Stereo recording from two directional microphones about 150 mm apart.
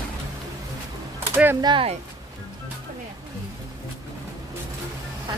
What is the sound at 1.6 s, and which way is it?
Speech, 30° right (ahead or behind).